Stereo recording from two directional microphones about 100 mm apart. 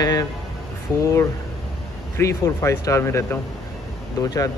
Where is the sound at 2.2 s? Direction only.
30° left (ahead or behind).